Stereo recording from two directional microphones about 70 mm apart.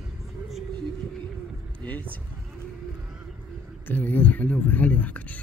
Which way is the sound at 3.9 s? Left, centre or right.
Left.